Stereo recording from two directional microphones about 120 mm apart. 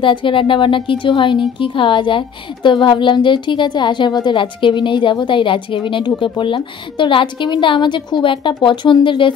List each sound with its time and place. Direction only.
0.0 s a woman's voice: 45° left (ahead or behind)